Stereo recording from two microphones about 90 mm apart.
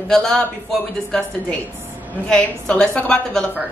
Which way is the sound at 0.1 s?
5° left (ahead or behind).